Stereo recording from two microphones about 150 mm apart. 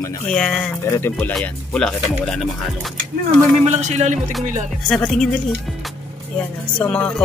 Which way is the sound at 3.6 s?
50° right (ahead or behind).